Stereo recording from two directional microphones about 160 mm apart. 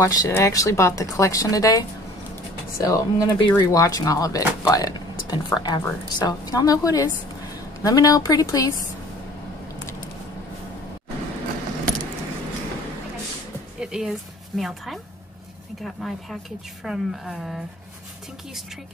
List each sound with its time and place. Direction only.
0.0 s speech: 25° left (ahead or behind)
13.7 s music: 5° right (ahead or behind)
14.6 s speech: centre (ahead or behind)